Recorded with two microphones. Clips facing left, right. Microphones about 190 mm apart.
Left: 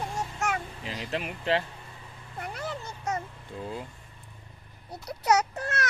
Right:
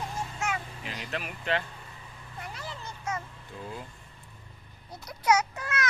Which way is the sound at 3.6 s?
25° left (ahead or behind).